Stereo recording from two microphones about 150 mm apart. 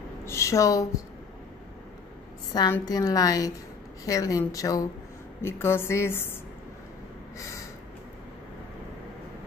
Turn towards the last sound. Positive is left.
turn(degrees=20)  # may be behind; listen again after turning